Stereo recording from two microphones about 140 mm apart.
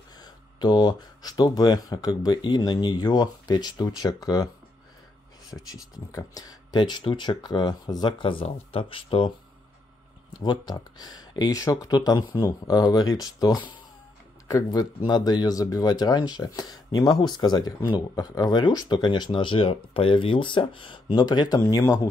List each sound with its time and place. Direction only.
0.2 s speech: 30° left (ahead or behind)
5.5 s speech: 15° left (ahead or behind); by 9.3 s 40° left (ahead or behind)
10.4 s speech: 30° left (ahead or behind)